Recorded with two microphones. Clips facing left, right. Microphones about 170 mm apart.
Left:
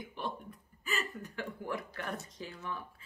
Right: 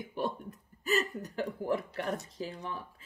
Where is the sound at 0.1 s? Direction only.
45° right (ahead or behind).